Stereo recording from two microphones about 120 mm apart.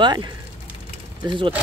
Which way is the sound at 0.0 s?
35° right (ahead or behind).